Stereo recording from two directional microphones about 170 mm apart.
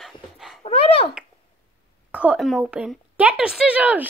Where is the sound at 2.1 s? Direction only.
5° right (ahead or behind).